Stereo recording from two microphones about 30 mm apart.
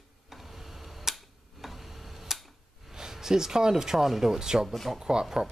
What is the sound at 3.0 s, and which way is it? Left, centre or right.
Speech, centre.